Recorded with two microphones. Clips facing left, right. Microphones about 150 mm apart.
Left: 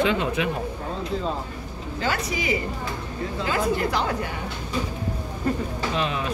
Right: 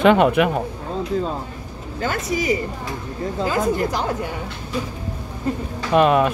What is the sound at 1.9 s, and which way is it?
Speech, 45° right (ahead or behind).